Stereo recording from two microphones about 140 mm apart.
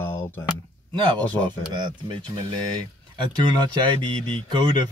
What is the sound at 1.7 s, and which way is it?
Speech, 35° right (ahead or behind).